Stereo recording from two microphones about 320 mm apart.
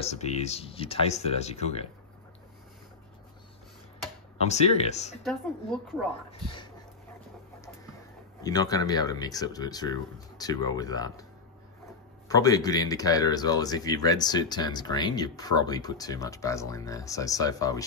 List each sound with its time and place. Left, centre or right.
0.0 s speech: centre
4.5 s speech: centre
5.2 s speech: centre
8.4 s speech: centre
12.3 s speech: centre